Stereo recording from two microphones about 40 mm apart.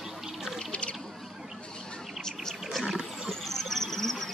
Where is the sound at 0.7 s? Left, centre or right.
Left.